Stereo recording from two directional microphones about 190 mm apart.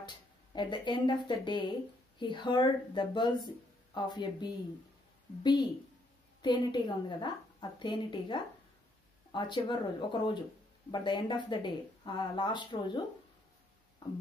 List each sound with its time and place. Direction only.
0.0 s speech: 25° left (ahead or behind)